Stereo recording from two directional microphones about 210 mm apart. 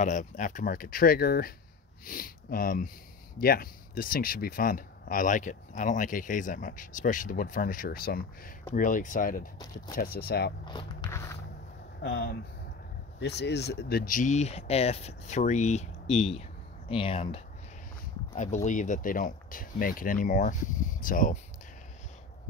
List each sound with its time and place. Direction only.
0.0 s speech: 35° left (ahead or behind)
10.6 s speech: 20° left (ahead or behind)
13.2 s speech: 50° left (ahead or behind)